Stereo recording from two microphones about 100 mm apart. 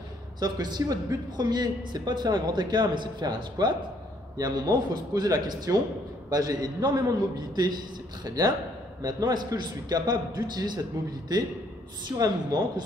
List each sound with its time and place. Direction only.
0.4 s a man's voice: 45° right (ahead or behind)
9.0 s speech: 45° right (ahead or behind)
12.2 s a man's voice: 40° right (ahead or behind)